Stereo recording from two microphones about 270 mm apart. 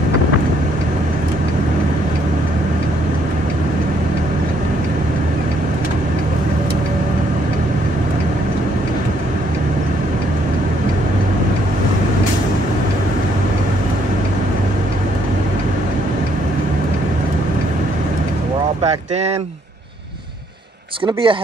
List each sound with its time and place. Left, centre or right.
21.0 s speech: centre